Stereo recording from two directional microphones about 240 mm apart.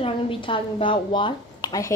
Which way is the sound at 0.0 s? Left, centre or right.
Left.